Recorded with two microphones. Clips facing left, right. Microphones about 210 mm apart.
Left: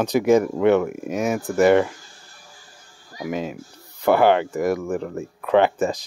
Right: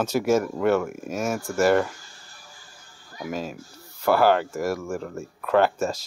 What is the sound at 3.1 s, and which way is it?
Speech, 15° left (ahead or behind).